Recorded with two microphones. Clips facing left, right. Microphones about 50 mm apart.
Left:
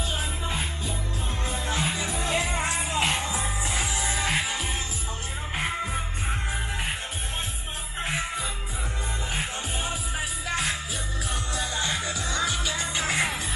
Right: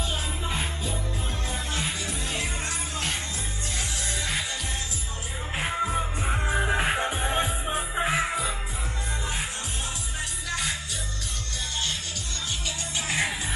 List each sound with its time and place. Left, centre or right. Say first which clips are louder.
0.5 s music: even; centre
1.5 s music: left 4 dB; left
3.7 s music: left 2 dB; centre
5.6 s music: right 3 dB; centre
6.6 s music: right 7 dB; centre
7.7 s music: right 4 dB; centre
10.5 s music: left 2 dB; centre
13.0 s music: left 1 dB; left